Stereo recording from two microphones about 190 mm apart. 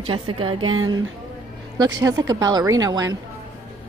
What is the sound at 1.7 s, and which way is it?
A woman's voice, 20° right (ahead or behind).